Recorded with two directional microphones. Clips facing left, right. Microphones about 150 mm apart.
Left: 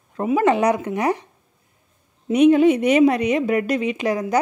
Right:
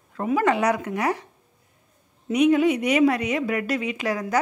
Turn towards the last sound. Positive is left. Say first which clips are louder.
# left 4 dB
turn(degrees=20)  # may be behind; listen again after turning